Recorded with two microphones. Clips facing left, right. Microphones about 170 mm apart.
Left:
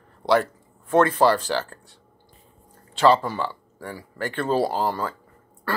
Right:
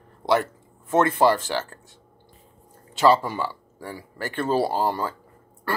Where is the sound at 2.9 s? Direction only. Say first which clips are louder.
Even; 10° right (ahead or behind).